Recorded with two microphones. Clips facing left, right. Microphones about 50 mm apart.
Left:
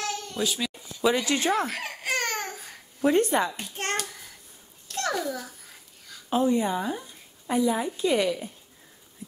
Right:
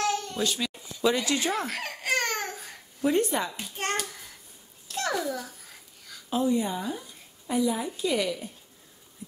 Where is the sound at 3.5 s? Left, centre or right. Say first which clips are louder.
Even; centre.